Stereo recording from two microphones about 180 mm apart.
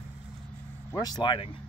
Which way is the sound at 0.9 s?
20° left (ahead or behind).